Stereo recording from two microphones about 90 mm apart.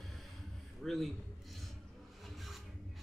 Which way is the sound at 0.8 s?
Centre (ahead or behind).